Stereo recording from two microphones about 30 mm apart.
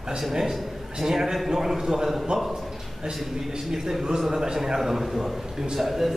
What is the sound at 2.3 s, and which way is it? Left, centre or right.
Speech, right.